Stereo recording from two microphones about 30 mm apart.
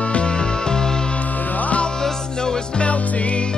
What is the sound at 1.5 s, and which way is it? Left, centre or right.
Music, left.